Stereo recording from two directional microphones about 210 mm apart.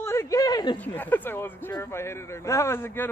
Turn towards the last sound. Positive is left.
turn(degrees=10)  # may be behind; listen again after turning